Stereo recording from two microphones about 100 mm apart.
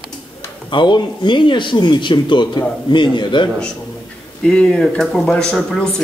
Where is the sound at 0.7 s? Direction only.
50° left (ahead or behind).